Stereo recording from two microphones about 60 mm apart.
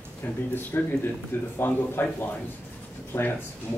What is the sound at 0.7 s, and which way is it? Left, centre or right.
A man's voice, left.